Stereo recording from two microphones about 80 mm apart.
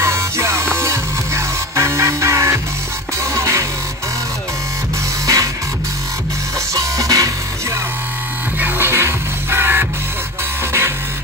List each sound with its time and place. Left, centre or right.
0.0 s music: right
5.2 s music: right
6.7 s music: right
8.5 s music: right